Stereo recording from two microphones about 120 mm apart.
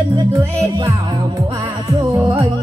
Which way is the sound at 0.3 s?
20° right (ahead or behind).